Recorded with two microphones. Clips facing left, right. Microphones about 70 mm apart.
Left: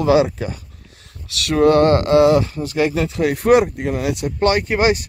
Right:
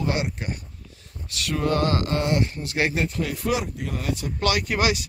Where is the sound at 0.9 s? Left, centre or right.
Left.